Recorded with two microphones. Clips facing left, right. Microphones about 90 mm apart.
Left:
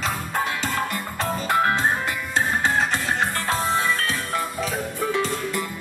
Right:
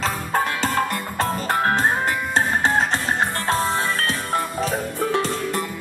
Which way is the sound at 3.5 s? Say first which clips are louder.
Even; 40° right (ahead or behind).